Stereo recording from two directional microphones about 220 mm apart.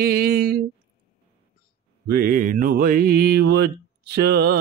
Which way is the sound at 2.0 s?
45° right (ahead or behind).